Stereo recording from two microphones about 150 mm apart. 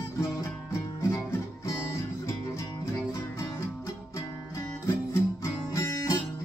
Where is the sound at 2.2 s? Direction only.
20° left (ahead or behind).